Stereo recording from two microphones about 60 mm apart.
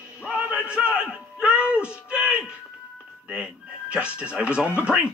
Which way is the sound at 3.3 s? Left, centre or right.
Centre.